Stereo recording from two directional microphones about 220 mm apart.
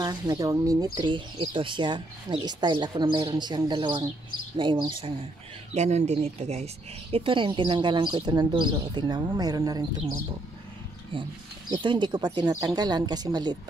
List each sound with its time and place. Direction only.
0.0 s speech: 15° right (ahead or behind)
11.7 s speech: 20° right (ahead or behind)